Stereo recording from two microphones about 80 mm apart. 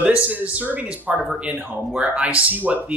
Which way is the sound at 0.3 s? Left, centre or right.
Centre.